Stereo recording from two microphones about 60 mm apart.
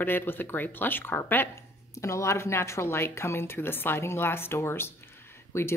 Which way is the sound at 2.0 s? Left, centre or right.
Left.